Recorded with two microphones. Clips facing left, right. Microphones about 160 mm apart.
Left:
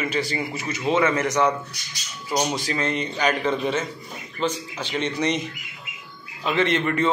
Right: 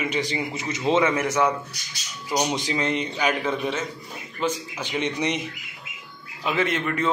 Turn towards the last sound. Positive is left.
turn(degrees=0)  # may be behind; listen again after turning